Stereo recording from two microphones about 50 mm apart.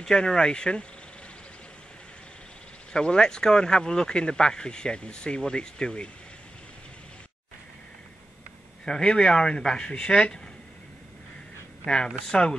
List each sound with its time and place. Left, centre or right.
0.0 s speech: centre
2.9 s speech: centre
8.8 s speech: centre
11.8 s speech: centre